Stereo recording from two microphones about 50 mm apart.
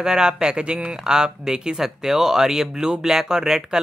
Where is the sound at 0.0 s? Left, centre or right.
Centre.